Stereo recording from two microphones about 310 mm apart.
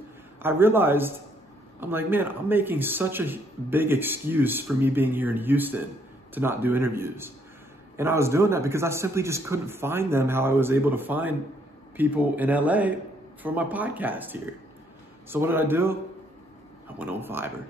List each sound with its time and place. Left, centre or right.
0.4 s a man's voice: centre
17.0 s a man's voice: centre